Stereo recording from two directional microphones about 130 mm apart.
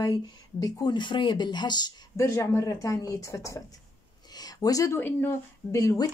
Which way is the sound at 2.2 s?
20° left (ahead or behind).